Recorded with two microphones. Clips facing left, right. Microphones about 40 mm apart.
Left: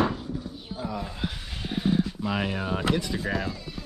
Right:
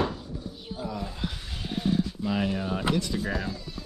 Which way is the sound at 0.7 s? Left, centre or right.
Centre.